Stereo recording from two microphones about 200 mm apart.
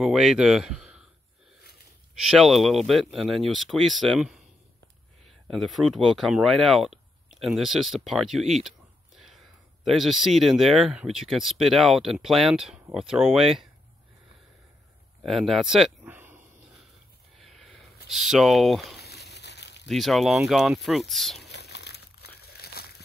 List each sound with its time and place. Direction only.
0.0 s speech: centre (ahead or behind)
2.1 s speech: centre (ahead or behind)
5.5 s speech: centre (ahead or behind)
15.2 s speech: centre (ahead or behind)
17.4 s a sound: centre (ahead or behind)
18.9 s a sound: 55° left (ahead or behind)
19.9 s speech: centre (ahead or behind)
21.5 s crumpling: 55° left (ahead or behind)